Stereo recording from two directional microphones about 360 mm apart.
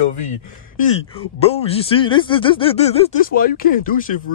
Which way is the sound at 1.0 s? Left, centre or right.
Centre.